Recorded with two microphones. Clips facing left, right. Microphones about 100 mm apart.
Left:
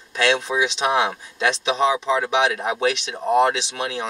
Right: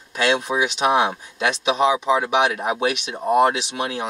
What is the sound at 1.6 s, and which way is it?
Speech, 10° right (ahead or behind).